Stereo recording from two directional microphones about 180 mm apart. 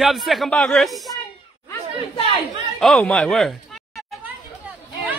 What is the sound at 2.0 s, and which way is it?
Speech, 30° left (ahead or behind).